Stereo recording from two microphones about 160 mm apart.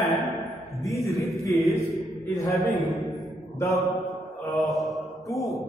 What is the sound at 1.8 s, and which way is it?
Mantra, 20° left (ahead or behind).